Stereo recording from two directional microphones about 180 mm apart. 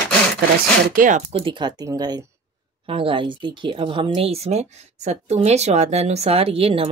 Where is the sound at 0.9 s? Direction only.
45° right (ahead or behind).